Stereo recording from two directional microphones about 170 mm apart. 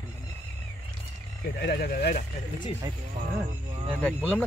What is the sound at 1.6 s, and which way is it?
Speech, 65° left (ahead or behind).